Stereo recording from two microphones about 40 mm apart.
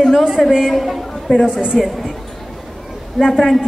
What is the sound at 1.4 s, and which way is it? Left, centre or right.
Speech, centre.